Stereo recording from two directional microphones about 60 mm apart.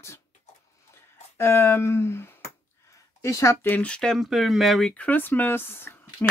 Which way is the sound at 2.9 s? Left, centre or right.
Left.